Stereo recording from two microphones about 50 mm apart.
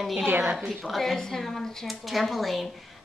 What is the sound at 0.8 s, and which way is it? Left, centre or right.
Speech, centre.